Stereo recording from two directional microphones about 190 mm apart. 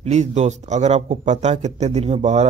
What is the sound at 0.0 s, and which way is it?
A man's voice, 35° right (ahead or behind).